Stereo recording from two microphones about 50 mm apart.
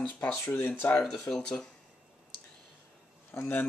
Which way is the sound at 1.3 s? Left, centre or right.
Centre.